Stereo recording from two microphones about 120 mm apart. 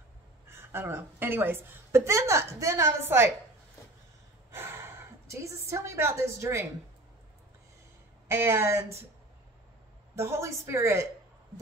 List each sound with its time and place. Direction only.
0.5 s a woman's voice: 20° right (ahead or behind)
4.5 s a sound: 20° right (ahead or behind)
8.3 s a woman's voice: 20° right (ahead or behind)
10.1 s a woman's voice: 25° right (ahead or behind)